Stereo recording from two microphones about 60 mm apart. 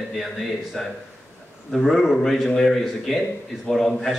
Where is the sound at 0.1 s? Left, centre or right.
Centre.